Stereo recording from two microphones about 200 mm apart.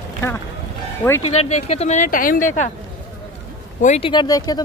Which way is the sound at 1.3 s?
30° left (ahead or behind).